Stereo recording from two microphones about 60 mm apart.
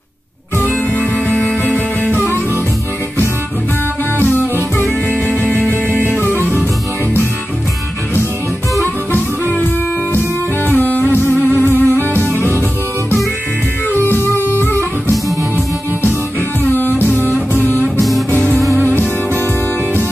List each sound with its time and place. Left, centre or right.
0.6 s music: left
2.1 s music: left
5.4 s music: left
10.7 s music: left
13.9 s music: left
16.7 s music: left
17.9 s music: centre
18.8 s music: left